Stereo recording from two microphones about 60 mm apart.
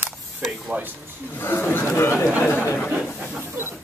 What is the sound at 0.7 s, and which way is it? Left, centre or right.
Speech, right.